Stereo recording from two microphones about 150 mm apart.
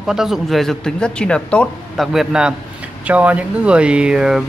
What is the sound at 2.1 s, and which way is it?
Speech, 5° right (ahead or behind).